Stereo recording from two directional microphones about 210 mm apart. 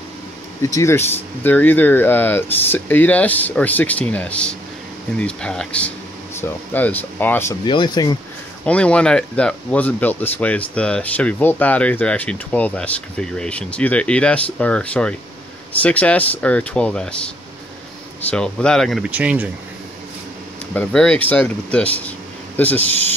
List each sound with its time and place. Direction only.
0.6 s speech: 15° left (ahead or behind)
7.6 s speech: 20° left (ahead or behind)
8.6 s speech: 5° left (ahead or behind)
18.3 s speech: 5° left (ahead or behind)
20.7 s speech: 5° left (ahead or behind)